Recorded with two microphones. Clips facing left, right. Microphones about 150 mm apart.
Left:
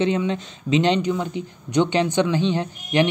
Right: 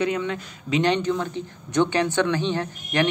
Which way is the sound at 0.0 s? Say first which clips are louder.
Left 3 dB; 25° left (ahead or behind).